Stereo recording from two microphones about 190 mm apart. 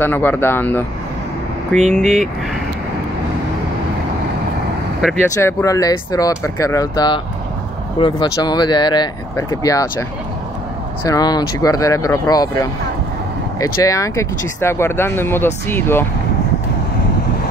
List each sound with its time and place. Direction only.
0.0 s speech: 10° left (ahead or behind)
1.8 s speech: 35° right (ahead or behind)
5.3 s speech: 15° left (ahead or behind)
11.1 s speech: 20° left (ahead or behind)
13.8 s speech: 15° left (ahead or behind)